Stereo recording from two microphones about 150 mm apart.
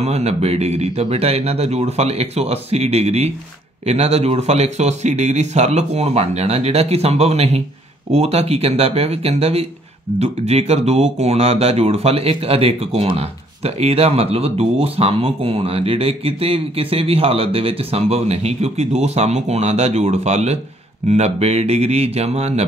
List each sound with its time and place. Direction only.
0.0 s speech: 45° right (ahead or behind)